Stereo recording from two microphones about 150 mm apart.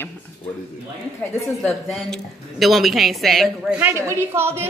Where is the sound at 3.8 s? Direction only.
15° right (ahead or behind).